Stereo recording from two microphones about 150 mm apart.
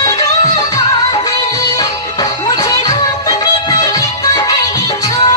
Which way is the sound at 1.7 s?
25° left (ahead or behind).